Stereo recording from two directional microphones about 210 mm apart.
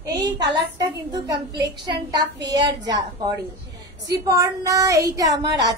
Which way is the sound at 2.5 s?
20° right (ahead or behind).